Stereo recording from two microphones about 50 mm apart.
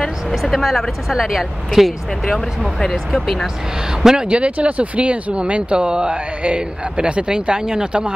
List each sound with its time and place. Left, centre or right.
0.3 s speech: centre
4.0 s speech: centre